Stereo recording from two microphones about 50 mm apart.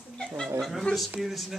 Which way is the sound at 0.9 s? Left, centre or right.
Left.